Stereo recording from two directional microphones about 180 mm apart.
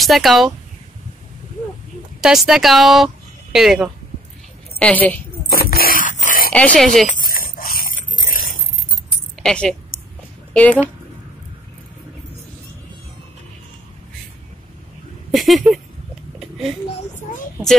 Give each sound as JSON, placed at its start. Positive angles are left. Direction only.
{"t": 0.0, "sound": "speech", "side_deg": 0}
{"t": 2.2, "sound": "speech", "side_deg": -5}
{"t": 4.7, "sound": "a woman's voice", "side_deg": 10}
{"t": 5.5, "sound": "dog", "side_deg": 55}
{"t": 6.5, "sound": "speech", "side_deg": 5}
{"t": 7.1, "sound": "dog", "side_deg": 50}
{"t": 8.3, "sound": "keys jangling", "side_deg": 50}
{"t": 9.4, "sound": "speech", "side_deg": 5}
{"t": 15.3, "sound": "speech", "side_deg": 0}
{"t": 16.3, "sound": "a sound", "side_deg": 0}